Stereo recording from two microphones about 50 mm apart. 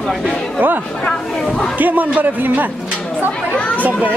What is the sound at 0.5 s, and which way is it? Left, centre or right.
Speech, right.